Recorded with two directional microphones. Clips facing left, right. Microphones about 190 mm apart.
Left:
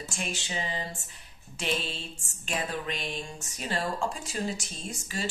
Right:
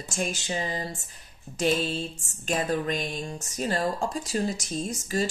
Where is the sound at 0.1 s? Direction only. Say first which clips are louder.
Right 7 dB; 40° right (ahead or behind).